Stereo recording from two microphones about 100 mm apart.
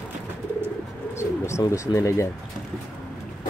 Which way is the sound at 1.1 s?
30° left (ahead or behind).